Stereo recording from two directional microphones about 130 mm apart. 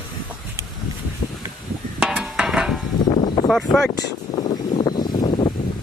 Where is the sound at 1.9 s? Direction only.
5° right (ahead or behind).